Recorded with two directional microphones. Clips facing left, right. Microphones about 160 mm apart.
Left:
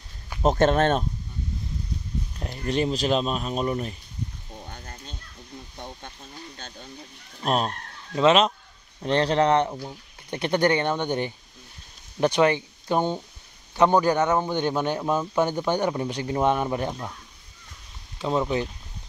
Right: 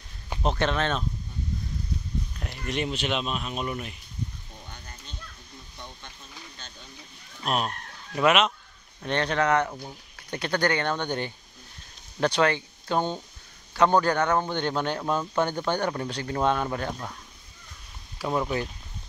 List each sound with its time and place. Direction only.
0.4 s speech: 45° left (ahead or behind)
2.5 s speech: 35° left (ahead or behind)
4.6 s fowl: 45° left (ahead or behind)
5.8 s a sound: 50° left (ahead or behind)
7.4 s speech: 35° left (ahead or behind); by 17.1 s 15° left (ahead or behind)
18.2 s speech: 25° left (ahead or behind)